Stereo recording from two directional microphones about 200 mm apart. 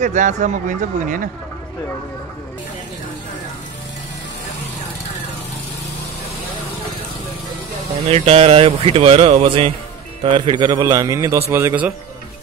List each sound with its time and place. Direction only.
0.0 s speech: 35° right (ahead or behind)
8.1 s a man's voice: 30° right (ahead or behind); by 11.9 s 10° right (ahead or behind)